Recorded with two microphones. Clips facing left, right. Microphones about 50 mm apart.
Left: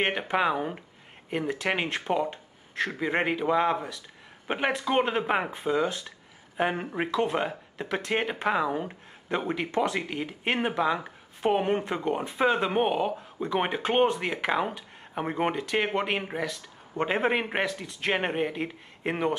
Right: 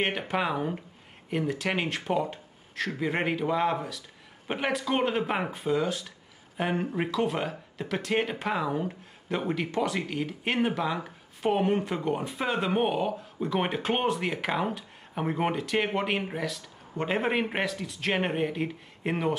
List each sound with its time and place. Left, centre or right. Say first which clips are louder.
0.0 s speech: left 3 dB; centre